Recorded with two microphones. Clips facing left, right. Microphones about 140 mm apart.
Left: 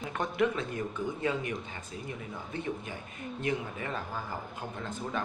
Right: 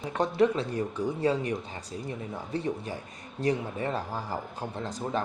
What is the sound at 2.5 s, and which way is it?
Speech, 35° right (ahead or behind).